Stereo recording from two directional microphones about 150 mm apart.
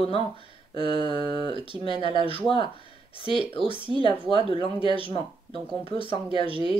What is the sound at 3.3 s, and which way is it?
Speech, 35° right (ahead or behind).